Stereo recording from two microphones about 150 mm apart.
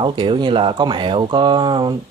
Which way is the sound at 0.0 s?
30° right (ahead or behind).